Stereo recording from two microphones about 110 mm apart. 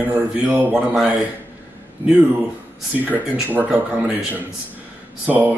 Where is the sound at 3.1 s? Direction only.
15° right (ahead or behind).